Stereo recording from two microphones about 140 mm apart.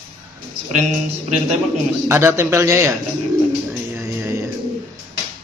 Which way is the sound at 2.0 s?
20° right (ahead or behind).